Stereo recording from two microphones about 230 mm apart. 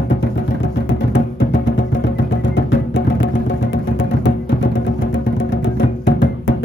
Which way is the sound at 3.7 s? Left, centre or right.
Left.